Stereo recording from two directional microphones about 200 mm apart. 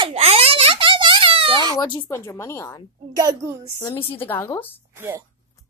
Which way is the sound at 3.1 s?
20° right (ahead or behind).